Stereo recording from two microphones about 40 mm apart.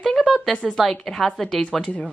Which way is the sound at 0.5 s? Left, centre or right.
Centre.